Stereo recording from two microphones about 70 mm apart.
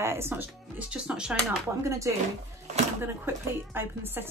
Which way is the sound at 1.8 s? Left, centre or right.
Right.